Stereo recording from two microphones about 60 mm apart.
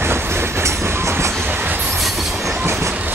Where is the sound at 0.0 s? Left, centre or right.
Right.